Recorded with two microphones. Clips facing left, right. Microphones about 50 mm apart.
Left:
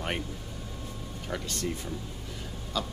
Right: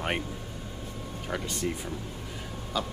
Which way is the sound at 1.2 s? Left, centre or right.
Centre.